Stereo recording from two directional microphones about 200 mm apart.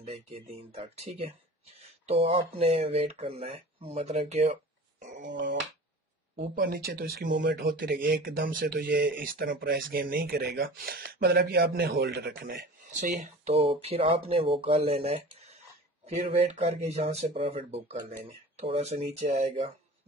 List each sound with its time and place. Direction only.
0.0 s speech: 30° right (ahead or behind)
5.0 s a sound: 40° right (ahead or behind)
5.3 s speech: 60° right (ahead or behind)
6.5 s speech: 50° right (ahead or behind)
13.0 s speech: 35° right (ahead or behind)